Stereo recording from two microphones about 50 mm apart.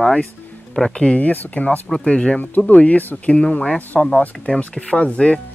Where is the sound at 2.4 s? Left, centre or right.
Left.